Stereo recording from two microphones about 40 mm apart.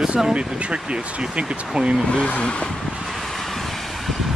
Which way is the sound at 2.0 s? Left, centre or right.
Left.